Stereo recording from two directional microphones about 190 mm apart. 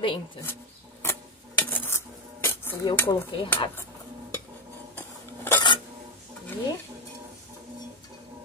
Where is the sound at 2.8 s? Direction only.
25° left (ahead or behind).